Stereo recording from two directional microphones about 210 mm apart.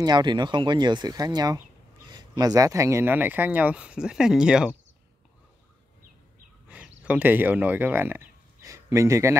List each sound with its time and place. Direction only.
0.0 s speech: 20° right (ahead or behind); by 4.7 s 5° right (ahead or behind)
7.0 s speech: 5° right (ahead or behind)